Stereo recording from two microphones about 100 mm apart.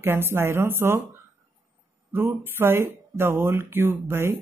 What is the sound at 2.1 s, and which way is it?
Speech, 20° right (ahead or behind).